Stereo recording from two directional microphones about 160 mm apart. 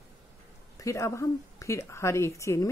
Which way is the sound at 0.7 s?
20° left (ahead or behind).